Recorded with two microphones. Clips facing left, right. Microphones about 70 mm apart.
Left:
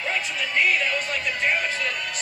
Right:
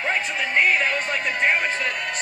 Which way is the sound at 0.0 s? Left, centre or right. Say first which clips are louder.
Right 3 dB; right.